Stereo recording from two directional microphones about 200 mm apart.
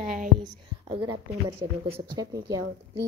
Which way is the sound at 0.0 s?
40° right (ahead or behind).